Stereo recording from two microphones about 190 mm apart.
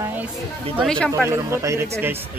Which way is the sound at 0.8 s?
5° left (ahead or behind).